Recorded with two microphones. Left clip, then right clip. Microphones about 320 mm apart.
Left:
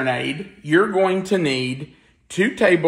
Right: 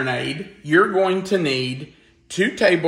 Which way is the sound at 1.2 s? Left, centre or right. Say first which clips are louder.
Even; centre.